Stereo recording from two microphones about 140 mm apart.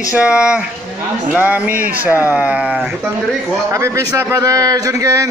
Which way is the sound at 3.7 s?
20° right (ahead or behind).